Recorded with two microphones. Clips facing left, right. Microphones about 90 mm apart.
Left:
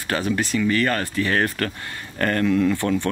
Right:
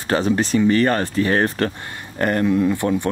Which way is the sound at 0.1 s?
25° right (ahead or behind).